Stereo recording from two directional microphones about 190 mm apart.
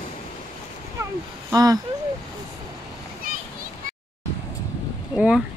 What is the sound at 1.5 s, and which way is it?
Speech, 20° right (ahead or behind).